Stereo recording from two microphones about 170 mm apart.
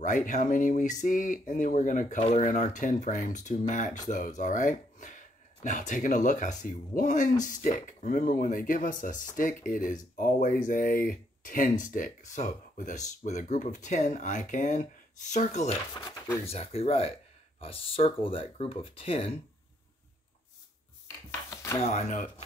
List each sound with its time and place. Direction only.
0.0 s speech: 50° left (ahead or behind)
15.9 s speech: 15° left (ahead or behind)
16.4 s speech: 35° left (ahead or behind)
21.3 s a sound: 15° left (ahead or behind)
21.8 s speech: 40° left (ahead or behind)